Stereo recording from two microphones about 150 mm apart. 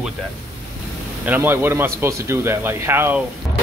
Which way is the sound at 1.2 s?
15° right (ahead or behind).